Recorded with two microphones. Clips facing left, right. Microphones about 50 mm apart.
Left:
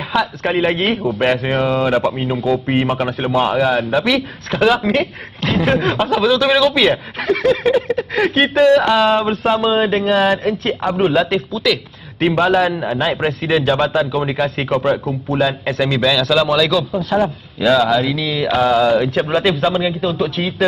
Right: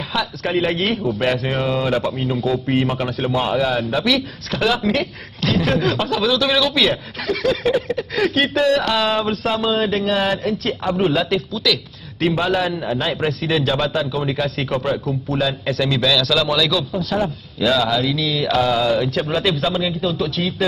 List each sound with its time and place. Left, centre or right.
0.1 s a man's voice: left